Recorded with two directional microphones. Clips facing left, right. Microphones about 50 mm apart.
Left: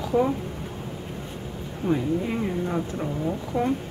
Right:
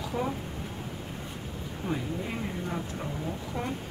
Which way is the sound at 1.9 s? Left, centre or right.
Centre.